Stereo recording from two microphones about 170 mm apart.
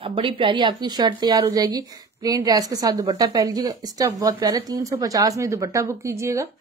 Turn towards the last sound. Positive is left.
turn(degrees=-15)  # may be behind; listen again after turning